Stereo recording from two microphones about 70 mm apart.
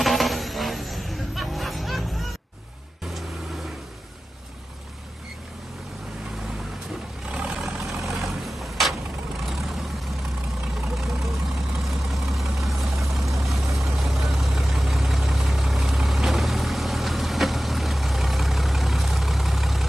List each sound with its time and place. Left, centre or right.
0.0 s vehicle: centre
7.2 s vehicle: centre
11.0 s vehicle: centre